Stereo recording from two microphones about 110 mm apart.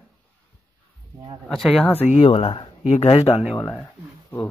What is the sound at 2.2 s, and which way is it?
Speech, 55° left (ahead or behind).